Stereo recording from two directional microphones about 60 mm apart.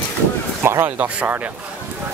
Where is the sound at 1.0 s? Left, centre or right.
Right.